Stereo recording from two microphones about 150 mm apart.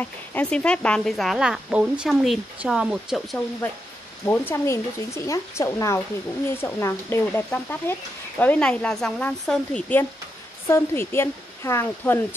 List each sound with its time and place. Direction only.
0.0 s speech: 10° left (ahead or behind)
4.3 s a woman's voice: 15° left (ahead or behind)